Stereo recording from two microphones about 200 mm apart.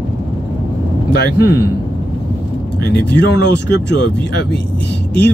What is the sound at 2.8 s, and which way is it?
Speech, 55° left (ahead or behind).